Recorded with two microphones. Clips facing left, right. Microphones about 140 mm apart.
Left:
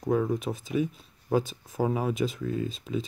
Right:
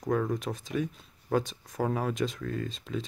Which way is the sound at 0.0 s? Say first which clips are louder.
Left 3 dB; 5° left (ahead or behind).